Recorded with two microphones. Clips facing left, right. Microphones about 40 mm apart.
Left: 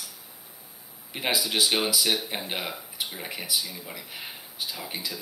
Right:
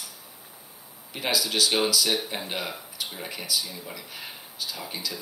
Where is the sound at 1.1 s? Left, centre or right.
Centre.